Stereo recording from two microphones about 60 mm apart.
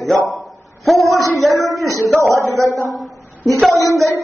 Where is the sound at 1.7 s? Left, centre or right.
Right.